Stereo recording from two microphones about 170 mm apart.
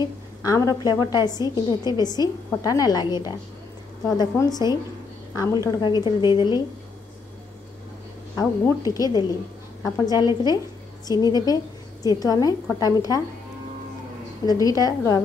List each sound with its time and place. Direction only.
0.4 s a woman's voice: 20° left (ahead or behind)
8.4 s a woman's voice: 20° left (ahead or behind)
14.4 s a woman's voice: 20° left (ahead or behind)